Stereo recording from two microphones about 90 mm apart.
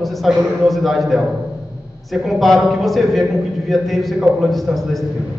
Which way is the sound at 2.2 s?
Centre (ahead or behind).